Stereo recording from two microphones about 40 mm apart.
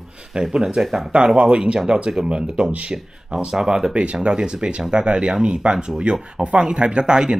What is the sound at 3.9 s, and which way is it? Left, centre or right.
Speech, right.